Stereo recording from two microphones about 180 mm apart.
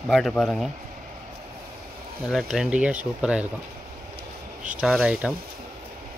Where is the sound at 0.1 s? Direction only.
Centre (ahead or behind).